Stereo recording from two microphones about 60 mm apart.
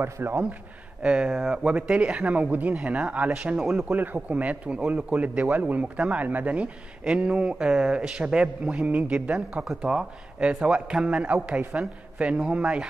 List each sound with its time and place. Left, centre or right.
0.0 s speech: right
1.0 s speech: centre
3.9 s speech: right